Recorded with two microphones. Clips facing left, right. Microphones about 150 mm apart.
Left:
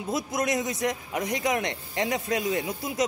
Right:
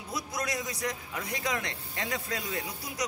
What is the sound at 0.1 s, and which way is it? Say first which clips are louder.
A man's voice: left 7 dB; 20° left (ahead or behind).